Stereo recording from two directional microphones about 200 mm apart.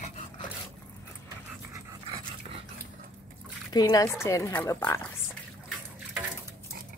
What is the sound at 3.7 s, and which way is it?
A woman's voice, 15° left (ahead or behind).